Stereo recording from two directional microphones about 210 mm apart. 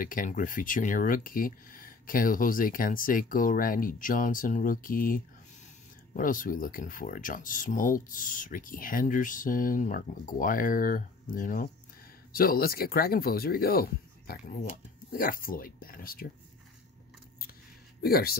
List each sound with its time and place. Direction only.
0.0 s speech: 40° left (ahead or behind)
18.0 s speech: 45° left (ahead or behind)